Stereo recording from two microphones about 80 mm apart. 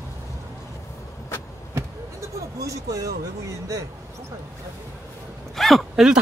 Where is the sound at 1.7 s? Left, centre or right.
Right.